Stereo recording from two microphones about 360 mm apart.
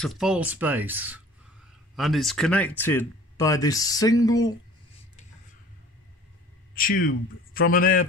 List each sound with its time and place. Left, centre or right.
0.0 s speech: centre
6.7 s speech: left